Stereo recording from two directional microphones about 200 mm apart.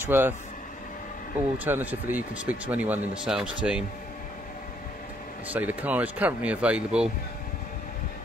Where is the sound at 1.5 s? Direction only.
10° right (ahead or behind).